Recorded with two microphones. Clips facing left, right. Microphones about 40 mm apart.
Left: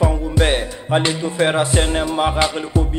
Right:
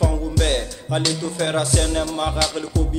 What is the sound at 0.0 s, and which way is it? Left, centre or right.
Music, left.